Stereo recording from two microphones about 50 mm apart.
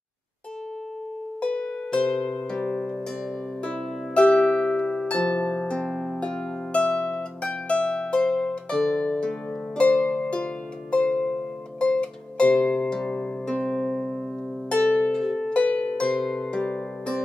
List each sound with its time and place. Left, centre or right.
1.4 s music: centre
2.1 s harp: centre
6.1 s music: left
8.3 s harp: centre
11.8 s music: left
14.7 s music: left
15.1 s harp: centre
15.5 s harp: left
16.2 s harp: centre
16.5 s harp: centre